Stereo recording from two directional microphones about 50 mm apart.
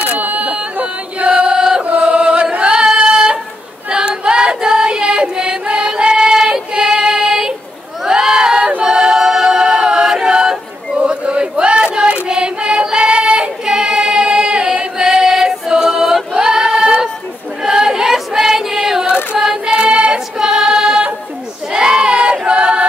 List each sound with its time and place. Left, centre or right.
0.1 s chant: right; by 1.8 s centre
1.8 s chant: right
2.7 s music: centre
3.9 s choir: centre
8.0 s crowd: centre
8.8 s choir: centre